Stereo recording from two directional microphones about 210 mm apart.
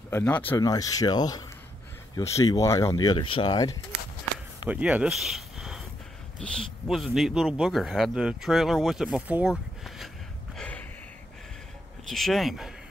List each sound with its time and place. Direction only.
0.1 s speech: 5° left (ahead or behind)
4.6 s a man's voice: 5° right (ahead or behind)
10.6 s a sound: 5° left (ahead or behind)
12.1 s a man's voice: centre (ahead or behind)